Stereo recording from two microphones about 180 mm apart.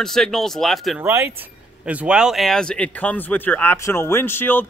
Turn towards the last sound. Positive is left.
turn(degrees=10)  # may be behind; listen again after turning